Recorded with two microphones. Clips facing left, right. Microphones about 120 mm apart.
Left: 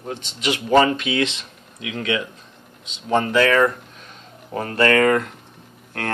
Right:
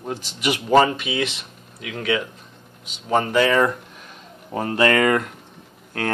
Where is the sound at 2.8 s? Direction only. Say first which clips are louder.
Left 1 dB; 10° right (ahead or behind).